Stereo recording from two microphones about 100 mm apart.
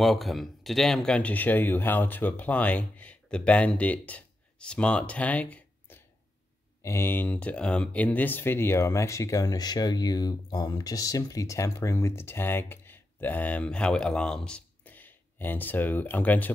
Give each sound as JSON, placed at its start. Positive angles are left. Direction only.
{"t": 0.0, "sound": "speech", "side_deg": 0}
{"t": 6.8, "sound": "speech", "side_deg": 25}